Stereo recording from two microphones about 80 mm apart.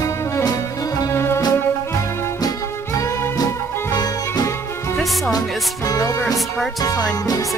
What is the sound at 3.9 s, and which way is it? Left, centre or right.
Music, left.